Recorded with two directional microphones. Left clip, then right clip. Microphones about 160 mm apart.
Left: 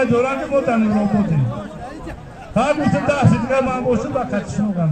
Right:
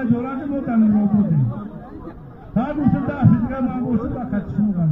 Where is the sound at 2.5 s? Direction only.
30° left (ahead or behind).